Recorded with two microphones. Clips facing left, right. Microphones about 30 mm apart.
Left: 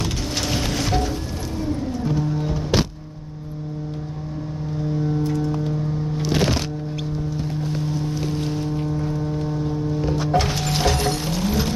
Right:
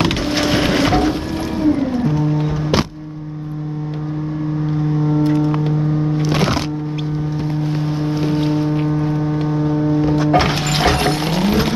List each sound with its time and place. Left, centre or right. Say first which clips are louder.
0.3 s a sound: right 7 dB; right
1.6 s music: right 9 dB; right
5.0 s vehicle: right 8 dB; right
6.3 s music: right 1 dB; right
7.8 s boat: right 6 dB; right
10.3 s music: right 6 dB; right